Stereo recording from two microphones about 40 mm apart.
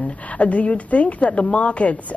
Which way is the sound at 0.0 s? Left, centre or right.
Left.